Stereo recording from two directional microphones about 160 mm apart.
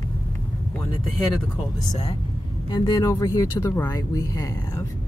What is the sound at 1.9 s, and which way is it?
Speech, 35° left (ahead or behind).